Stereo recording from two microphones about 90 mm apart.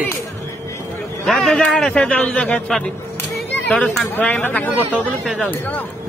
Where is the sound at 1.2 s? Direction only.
5° left (ahead or behind).